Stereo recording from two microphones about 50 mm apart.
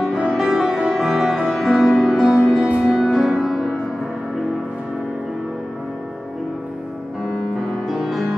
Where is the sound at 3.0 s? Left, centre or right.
Right.